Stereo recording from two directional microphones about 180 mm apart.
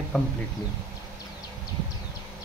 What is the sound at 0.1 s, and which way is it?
Speech, 5° left (ahead or behind).